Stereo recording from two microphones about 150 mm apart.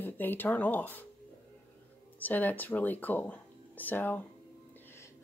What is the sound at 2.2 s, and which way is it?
Speech, 10° left (ahead or behind).